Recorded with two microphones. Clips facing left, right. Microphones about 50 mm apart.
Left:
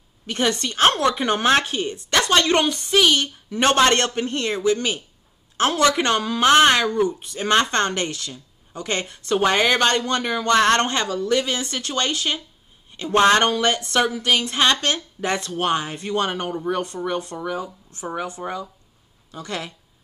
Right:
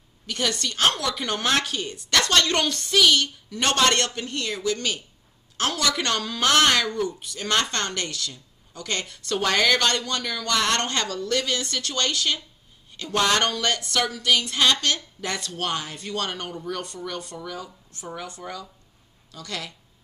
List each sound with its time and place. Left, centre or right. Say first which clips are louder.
0.3 s speech: left 4 dB; left